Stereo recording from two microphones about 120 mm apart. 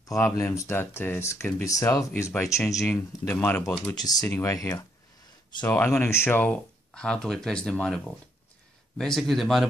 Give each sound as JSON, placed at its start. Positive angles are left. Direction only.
{"t": 0.0, "sound": "speech", "side_deg": 25}
{"t": 3.3, "sound": "speech", "side_deg": 15}
{"t": 3.9, "sound": "speech", "side_deg": 30}